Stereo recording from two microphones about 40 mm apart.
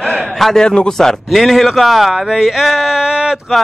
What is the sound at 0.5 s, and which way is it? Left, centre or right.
Speech, left.